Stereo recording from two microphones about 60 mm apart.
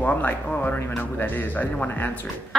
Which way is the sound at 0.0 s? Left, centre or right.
Left.